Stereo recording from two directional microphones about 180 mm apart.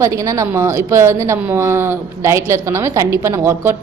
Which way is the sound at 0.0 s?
15° right (ahead or behind).